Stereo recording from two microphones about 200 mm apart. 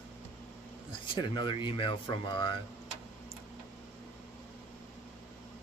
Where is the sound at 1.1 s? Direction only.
25° left (ahead or behind).